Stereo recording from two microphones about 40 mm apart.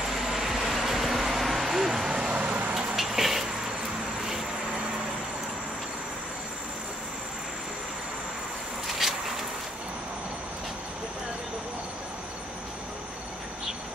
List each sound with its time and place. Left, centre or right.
0.1 s vehicle: centre
2.0 s vehicle: right
2.3 s vehicle: right
2.7 s vehicle: right
3.0 s vehicle: centre
8.8 s a sound: centre